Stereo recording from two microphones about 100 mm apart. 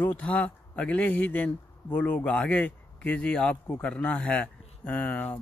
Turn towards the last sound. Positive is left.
turn(degrees=15)  # may be behind; listen again after turning